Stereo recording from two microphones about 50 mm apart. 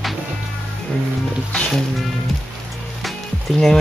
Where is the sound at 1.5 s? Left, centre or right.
Centre.